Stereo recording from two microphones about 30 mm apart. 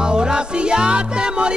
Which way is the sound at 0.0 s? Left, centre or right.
Right.